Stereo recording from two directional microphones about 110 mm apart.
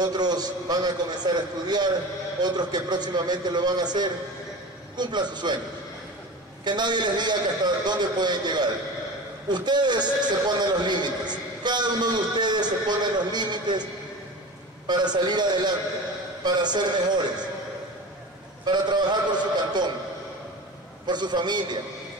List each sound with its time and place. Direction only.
0.0 s a man's voice: 40° right (ahead or behind)
6.6 s a man's voice: 40° right (ahead or behind)
14.9 s a man's voice: 40° right (ahead or behind)
18.7 s a man's voice: 40° right (ahead or behind)
21.1 s a man's voice: 40° right (ahead or behind)